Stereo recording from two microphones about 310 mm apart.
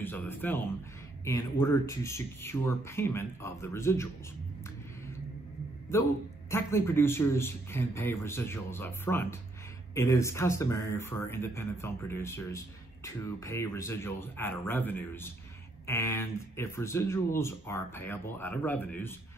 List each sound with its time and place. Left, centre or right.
0.0 s speech: centre
5.9 s a man's voice: centre